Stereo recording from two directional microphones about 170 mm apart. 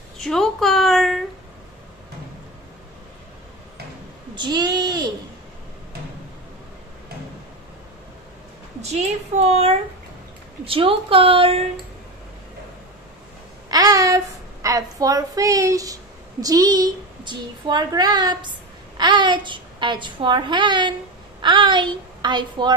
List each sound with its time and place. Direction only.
0.2 s a woman's voice: centre (ahead or behind)
4.4 s a sound: 25° right (ahead or behind)
8.8 s speech: 40° right (ahead or behind)
13.7 s a woman's voice: 20° right (ahead or behind)